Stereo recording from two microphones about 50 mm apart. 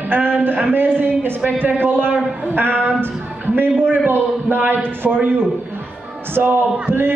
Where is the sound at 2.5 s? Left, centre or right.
Right.